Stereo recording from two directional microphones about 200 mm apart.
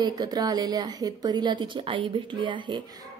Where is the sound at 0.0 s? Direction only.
20° right (ahead or behind).